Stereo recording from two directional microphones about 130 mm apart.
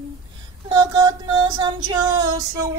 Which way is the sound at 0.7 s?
30° right (ahead or behind).